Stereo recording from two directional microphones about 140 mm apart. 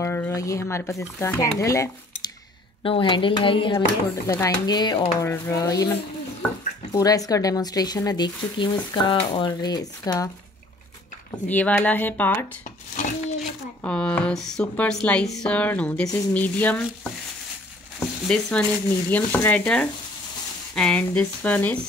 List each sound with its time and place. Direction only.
0.0 s speech: 15° left (ahead or behind)
2.8 s speech: 35° left (ahead or behind)
3.7 s speech: 20° left (ahead or behind)
11.4 s speech: 10° left (ahead or behind)
13.8 s speech: 10° left (ahead or behind)
18.2 s speech: 5° left (ahead or behind)